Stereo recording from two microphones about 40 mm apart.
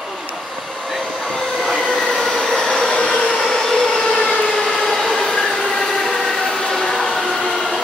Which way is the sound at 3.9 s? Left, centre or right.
Left.